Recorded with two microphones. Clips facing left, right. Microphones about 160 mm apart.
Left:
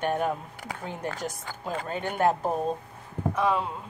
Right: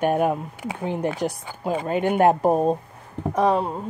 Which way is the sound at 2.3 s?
50° right (ahead or behind).